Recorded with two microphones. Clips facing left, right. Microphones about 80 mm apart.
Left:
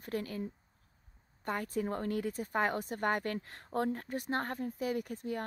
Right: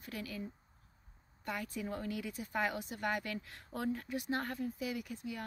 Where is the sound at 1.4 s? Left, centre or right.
Left.